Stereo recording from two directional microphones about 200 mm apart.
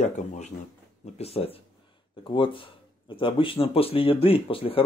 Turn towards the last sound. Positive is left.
turn(degrees=25)  # may be behind; listen again after turning